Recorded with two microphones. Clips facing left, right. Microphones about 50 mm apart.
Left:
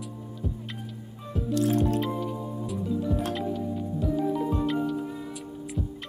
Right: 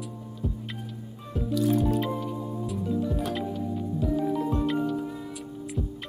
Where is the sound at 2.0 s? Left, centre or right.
Centre.